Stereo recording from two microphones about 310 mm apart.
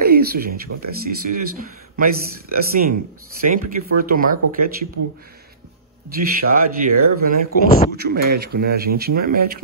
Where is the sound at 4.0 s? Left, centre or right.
Right.